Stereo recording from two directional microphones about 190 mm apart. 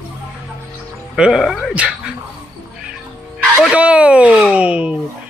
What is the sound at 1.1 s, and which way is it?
Speech, 5° right (ahead or behind).